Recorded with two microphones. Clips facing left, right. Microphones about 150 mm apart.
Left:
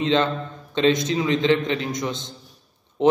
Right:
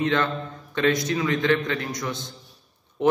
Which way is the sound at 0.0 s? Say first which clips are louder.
Left 3 dB; 20° left (ahead or behind).